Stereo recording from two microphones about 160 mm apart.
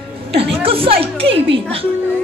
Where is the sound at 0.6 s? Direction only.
35° right (ahead or behind).